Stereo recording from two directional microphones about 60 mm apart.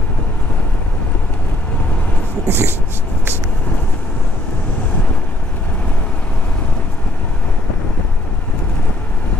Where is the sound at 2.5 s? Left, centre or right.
Right.